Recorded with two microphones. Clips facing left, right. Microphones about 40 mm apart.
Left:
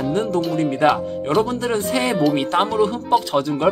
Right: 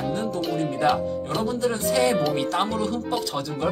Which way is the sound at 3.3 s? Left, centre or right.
Left.